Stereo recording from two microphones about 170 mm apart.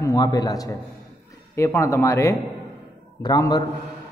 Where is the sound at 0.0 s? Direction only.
20° left (ahead or behind).